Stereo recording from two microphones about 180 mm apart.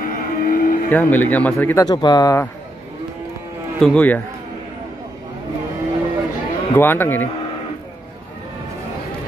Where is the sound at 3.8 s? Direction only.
10° left (ahead or behind).